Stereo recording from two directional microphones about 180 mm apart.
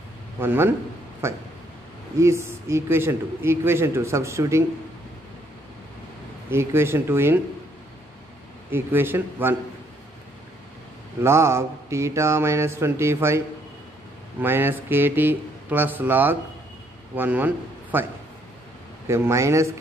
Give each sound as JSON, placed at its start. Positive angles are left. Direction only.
{"t": 0.4, "sound": "a man's voice", "side_deg": -10}
{"t": 6.5, "sound": "a man's voice", "side_deg": -15}
{"t": 8.7, "sound": "a man's voice", "side_deg": -10}
{"t": 11.2, "sound": "a man's voice", "side_deg": -15}
{"t": 14.4, "sound": "a man's voice", "side_deg": -10}
{"t": 19.0, "sound": "a man's voice", "side_deg": -15}